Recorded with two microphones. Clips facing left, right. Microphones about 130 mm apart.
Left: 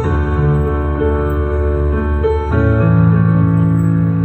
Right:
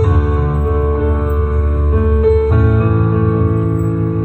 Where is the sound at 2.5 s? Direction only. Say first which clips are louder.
Left 1 dB; 45° right (ahead or behind).